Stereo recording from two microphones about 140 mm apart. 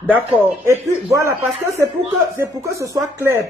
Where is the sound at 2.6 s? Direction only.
20° right (ahead or behind).